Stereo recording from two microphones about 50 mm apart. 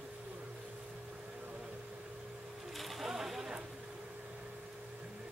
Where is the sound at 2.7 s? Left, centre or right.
Centre.